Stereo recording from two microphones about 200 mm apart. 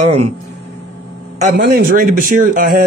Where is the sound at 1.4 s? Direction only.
40° right (ahead or behind).